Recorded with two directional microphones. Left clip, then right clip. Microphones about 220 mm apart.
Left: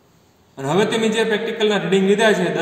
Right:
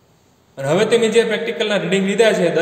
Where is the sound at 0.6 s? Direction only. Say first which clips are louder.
Right 4 dB; 35° right (ahead or behind).